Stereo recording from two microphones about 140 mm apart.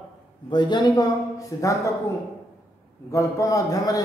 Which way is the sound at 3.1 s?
20° left (ahead or behind).